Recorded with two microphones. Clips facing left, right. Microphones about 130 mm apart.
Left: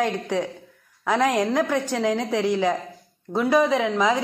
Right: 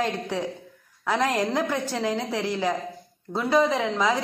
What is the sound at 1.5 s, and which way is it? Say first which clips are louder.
Speech: left 3 dB; 10° right (ahead or behind).